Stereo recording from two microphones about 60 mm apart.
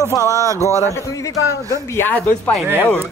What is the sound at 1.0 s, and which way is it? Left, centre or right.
Speech, left.